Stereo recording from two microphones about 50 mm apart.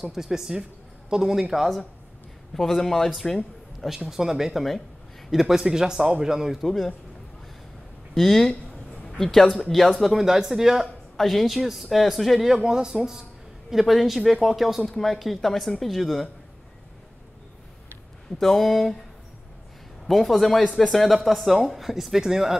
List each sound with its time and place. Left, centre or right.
0.0 s a man's voice: centre
8.2 s a man's voice: centre
12.5 s a man's voice: centre
18.4 s speech: centre
20.1 s speech: centre
20.6 s speech: centre
20.9 s speech: centre